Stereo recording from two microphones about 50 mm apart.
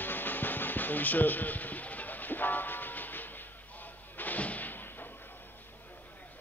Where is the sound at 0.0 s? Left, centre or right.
Left.